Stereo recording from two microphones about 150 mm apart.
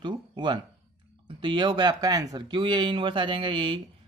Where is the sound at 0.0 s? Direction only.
30° right (ahead or behind).